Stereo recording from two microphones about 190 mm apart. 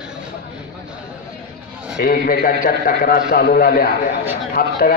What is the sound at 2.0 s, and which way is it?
A man's voice, 50° left (ahead or behind).